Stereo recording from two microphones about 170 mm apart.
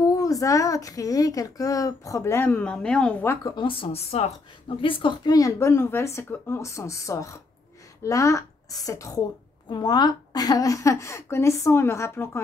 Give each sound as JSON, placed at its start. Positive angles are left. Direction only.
{"t": 0.0, "sound": "a woman's voice", "side_deg": 20}
{"t": 3.4, "sound": "a woman's voice", "side_deg": 30}